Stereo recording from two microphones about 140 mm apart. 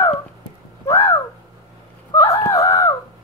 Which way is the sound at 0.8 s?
25° left (ahead or behind).